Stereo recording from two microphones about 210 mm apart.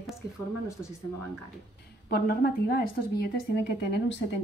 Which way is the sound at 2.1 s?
45° left (ahead or behind).